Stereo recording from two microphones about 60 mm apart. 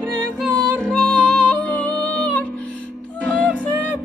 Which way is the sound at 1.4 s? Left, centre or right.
Left.